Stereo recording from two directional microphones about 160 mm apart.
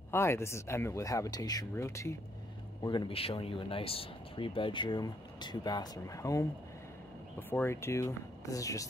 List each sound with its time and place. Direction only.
0.1 s speech: 15° left (ahead or behind)
2.8 s speech: 30° left (ahead or behind)